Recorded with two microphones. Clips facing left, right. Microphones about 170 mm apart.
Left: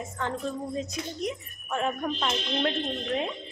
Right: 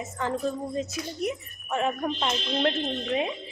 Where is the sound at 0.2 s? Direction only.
5° right (ahead or behind).